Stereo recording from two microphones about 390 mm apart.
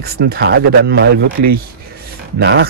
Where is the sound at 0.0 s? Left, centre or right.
Right.